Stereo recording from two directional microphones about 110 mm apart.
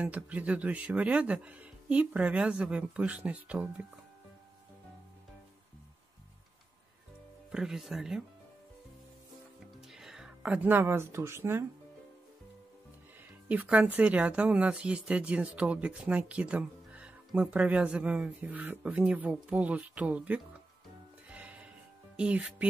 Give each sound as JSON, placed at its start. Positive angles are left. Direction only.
{"t": 0.0, "sound": "speech", "side_deg": -15}
{"t": 7.5, "sound": "speech", "side_deg": -5}
{"t": 9.9, "sound": "speech", "side_deg": -5}
{"t": 13.5, "sound": "speech", "side_deg": -15}
{"t": 21.3, "sound": "music", "side_deg": -10}
{"t": 22.1, "sound": "speech", "side_deg": -10}